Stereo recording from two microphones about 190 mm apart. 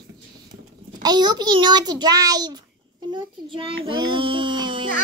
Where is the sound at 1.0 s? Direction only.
20° right (ahead or behind).